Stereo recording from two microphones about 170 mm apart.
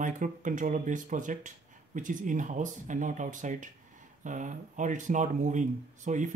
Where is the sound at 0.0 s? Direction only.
50° right (ahead or behind).